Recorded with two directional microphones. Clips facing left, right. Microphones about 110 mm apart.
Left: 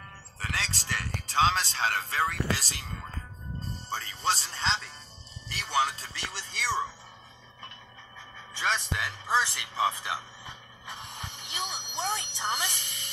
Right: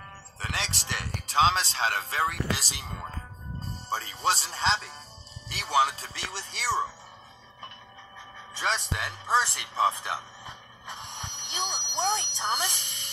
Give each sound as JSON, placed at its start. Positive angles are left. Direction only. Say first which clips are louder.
{"t": 0.4, "sound": "a man's voice", "louder": "right 1 dB", "side_deg": -20}
{"t": 4.6, "sound": "speech", "louder": "right 4 dB", "side_deg": -35}
{"t": 5.9, "sound": "speech", "louder": "right 1 dB", "side_deg": -35}
{"t": 6.6, "sound": "a man's voice", "louder": "right 2 dB", "side_deg": -5}
{"t": 8.5, "sound": "a man's voice", "louder": "even", "side_deg": 0}
{"t": 9.4, "sound": "a sound", "louder": "right 2 dB", "side_deg": 0}